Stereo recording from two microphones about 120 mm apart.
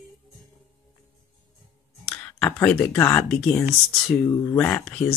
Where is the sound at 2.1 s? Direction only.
10° left (ahead or behind).